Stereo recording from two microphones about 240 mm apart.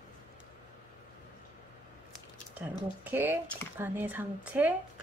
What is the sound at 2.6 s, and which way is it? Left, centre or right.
Speech, centre.